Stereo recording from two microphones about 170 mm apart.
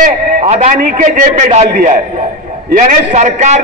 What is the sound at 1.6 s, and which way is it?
A man's voice, 55° right (ahead or behind).